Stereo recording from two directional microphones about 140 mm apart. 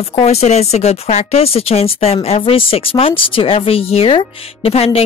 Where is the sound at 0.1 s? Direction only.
50° left (ahead or behind).